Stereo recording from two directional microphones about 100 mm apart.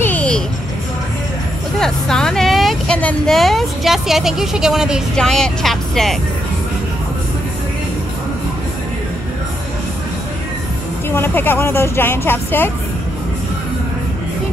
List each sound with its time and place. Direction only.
0.0 s music: 15° left (ahead or behind)
1.8 s vehicle: 5° left (ahead or behind)
3.3 s a woman's voice: centre (ahead or behind)
5.1 s a woman's voice: 5° left (ahead or behind)
11.1 s speech: 25° left (ahead or behind)